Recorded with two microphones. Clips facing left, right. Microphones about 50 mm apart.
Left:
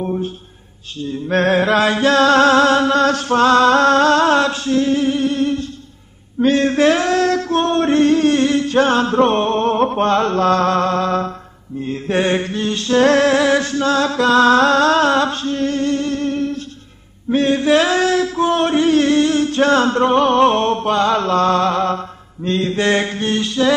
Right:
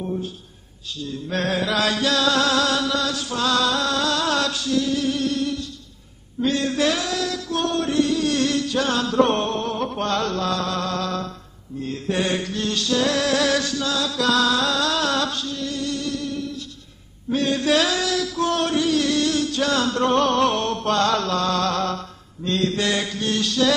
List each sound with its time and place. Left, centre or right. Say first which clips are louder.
0.0 s music: left 6 dB; left
6.4 s male singing: left 7 dB; left
11.8 s a sound: left 6 dB; left
17.3 s male singing: left 6 dB; left
20.8 s mantra: left 4 dB; left